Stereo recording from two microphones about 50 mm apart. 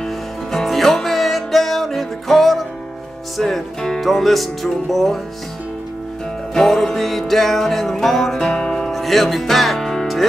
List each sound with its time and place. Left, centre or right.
0.0 s music: centre
6.5 s music: centre